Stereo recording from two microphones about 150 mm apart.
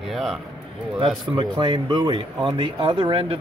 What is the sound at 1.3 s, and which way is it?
Speech, 30° right (ahead or behind).